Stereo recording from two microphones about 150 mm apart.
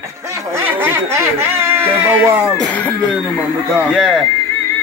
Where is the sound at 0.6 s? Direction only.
15° right (ahead or behind).